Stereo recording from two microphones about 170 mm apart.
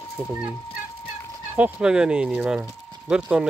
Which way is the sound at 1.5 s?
5° right (ahead or behind).